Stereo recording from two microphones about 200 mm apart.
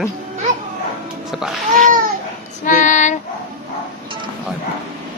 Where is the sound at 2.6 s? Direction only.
40° left (ahead or behind).